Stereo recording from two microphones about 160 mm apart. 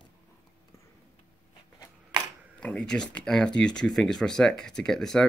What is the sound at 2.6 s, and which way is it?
Speech, 5° left (ahead or behind).